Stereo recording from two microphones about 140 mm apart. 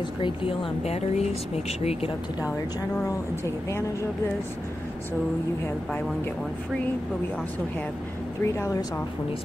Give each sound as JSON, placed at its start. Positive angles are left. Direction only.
{"t": 0.2, "sound": "speech", "side_deg": 40}
{"t": 8.5, "sound": "speech", "side_deg": 20}